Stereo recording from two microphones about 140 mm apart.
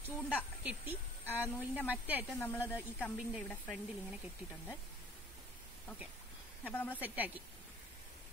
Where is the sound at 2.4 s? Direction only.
15° left (ahead or behind).